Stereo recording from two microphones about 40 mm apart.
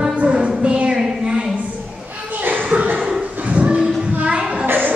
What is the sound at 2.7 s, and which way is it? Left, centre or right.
Cough, right.